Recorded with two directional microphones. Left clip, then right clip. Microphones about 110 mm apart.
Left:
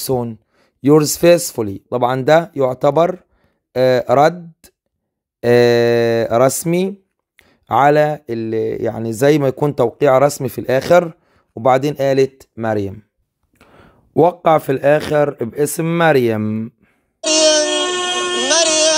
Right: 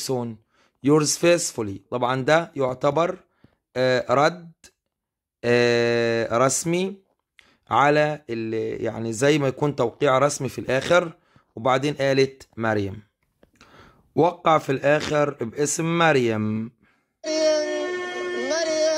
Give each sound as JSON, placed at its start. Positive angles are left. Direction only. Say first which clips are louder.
{"t": 0.0, "sound": "speech", "louder": "left 7 dB", "side_deg": 50}
{"t": 17.2, "sound": "music", "louder": "left 8 dB", "side_deg": 70}